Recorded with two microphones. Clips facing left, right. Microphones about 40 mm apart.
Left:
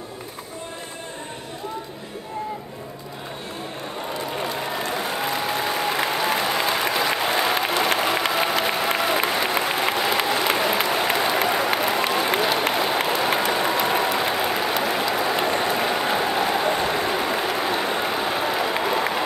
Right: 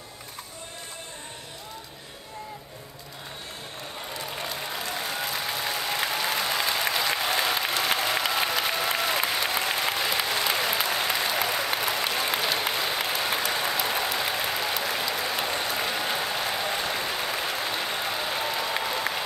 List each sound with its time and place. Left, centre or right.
4.4 s applause: left